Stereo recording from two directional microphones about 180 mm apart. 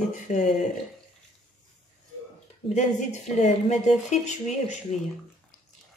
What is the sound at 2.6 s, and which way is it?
Speech, 40° left (ahead or behind).